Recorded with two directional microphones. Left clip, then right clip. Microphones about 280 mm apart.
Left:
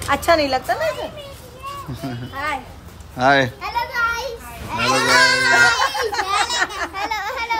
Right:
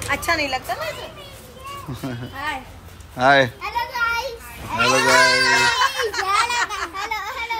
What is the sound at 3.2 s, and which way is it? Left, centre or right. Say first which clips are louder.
A child's voice: even; centre.